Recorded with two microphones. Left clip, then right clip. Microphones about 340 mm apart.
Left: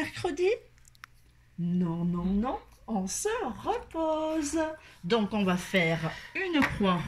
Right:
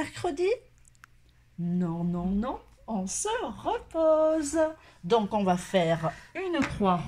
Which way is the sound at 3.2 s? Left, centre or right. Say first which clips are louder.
Right 1 dB; centre.